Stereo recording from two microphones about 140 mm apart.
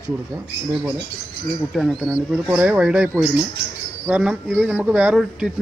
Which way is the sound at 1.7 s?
Centre (ahead or behind).